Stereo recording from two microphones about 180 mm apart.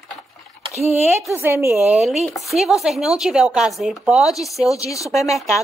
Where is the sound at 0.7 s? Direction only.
35° right (ahead or behind).